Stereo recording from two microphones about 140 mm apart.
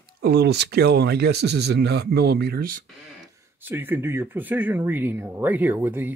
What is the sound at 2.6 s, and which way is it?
Speech, 80° right.